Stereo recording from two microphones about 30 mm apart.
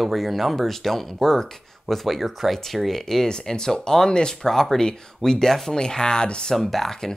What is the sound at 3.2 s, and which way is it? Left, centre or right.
Speech, left.